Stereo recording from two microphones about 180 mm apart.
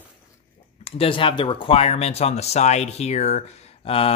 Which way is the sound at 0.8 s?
30° left (ahead or behind).